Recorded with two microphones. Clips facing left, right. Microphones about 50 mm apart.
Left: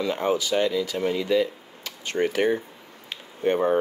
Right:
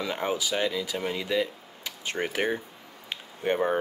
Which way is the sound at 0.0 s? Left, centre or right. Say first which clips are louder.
Left 5 dB; centre.